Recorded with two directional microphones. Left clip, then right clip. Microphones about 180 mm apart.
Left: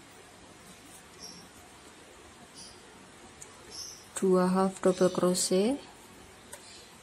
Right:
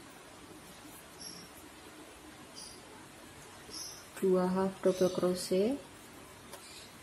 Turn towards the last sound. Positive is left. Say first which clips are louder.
# left 4 dB
turn(degrees=25)  # may be behind; listen again after turning